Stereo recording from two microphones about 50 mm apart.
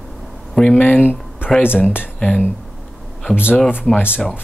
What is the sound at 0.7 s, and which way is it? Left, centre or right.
Speech, left.